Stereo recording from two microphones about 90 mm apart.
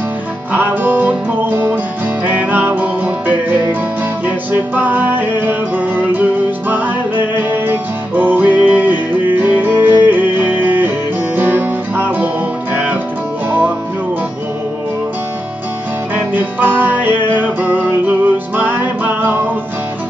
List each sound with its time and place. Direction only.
0.5 s music: 20° right (ahead or behind)
16.3 s music: 20° right (ahead or behind)